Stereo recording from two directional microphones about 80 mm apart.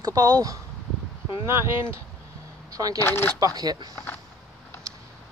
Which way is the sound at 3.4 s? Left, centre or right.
Right.